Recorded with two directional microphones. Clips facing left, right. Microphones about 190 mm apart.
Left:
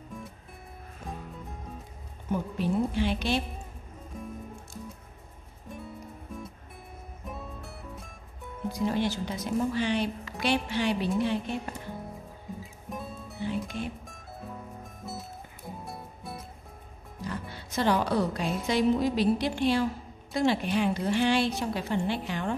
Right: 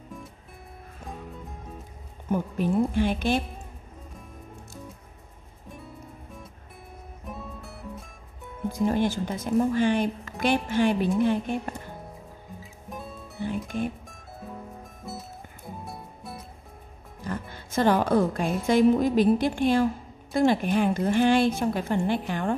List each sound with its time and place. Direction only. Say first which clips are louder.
2.3 s speech: right 3 dB; 50° right (ahead or behind)
7.2 s music: right 1 dB; centre (ahead or behind)
8.7 s speech: right 4 dB; 50° right (ahead or behind)
13.4 s music: right 3 dB; 50° right (ahead or behind)
15.0 s music: right 1 dB; centre (ahead or behind)
17.2 s speech: right 2 dB; 50° right (ahead or behind)